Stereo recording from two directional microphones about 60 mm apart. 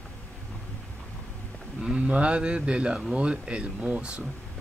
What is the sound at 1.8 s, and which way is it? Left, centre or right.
Speech, centre.